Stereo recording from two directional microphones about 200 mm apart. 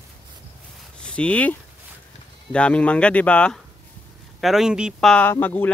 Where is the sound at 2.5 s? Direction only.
5° left (ahead or behind).